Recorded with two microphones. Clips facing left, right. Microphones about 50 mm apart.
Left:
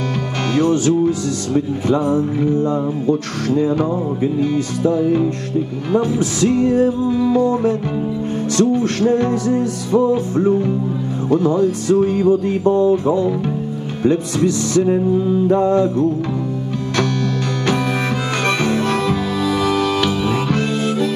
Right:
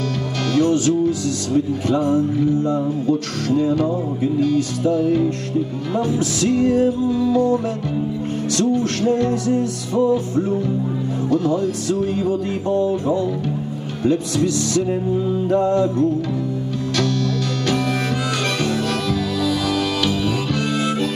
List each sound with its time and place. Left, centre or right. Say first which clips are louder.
0.6 s music: left 2 dB; left
18.6 s music: left 4 dB; left